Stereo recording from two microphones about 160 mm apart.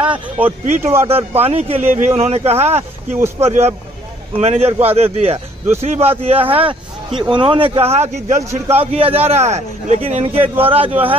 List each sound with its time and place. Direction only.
0.0 s speech: 10° right (ahead or behind)
1.0 s a man's voice: 40° right (ahead or behind)